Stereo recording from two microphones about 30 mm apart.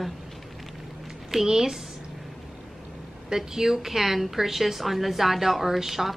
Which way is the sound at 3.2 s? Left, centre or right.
Centre.